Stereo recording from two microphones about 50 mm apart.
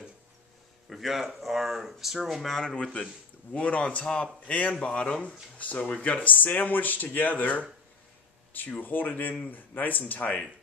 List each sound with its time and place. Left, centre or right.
0.8 s speech: centre
2.4 s speech: centre
2.7 s speech: left